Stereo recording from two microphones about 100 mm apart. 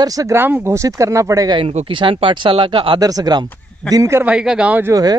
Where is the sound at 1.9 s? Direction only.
55° right (ahead or behind).